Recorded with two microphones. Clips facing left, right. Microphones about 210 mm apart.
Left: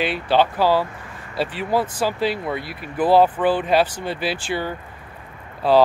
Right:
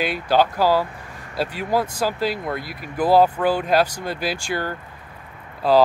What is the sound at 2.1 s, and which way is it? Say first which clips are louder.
Speech: left 1 dB; 40° right (ahead or behind).